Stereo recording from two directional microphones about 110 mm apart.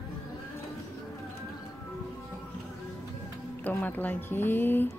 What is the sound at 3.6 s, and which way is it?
Speech, 15° left (ahead or behind).